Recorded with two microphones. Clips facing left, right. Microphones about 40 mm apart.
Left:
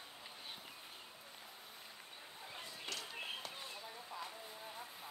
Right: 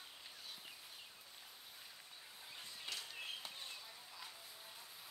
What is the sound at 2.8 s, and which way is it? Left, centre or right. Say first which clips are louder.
Music: left 2 dB; centre.